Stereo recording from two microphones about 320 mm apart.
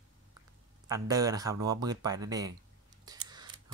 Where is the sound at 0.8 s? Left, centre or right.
Centre.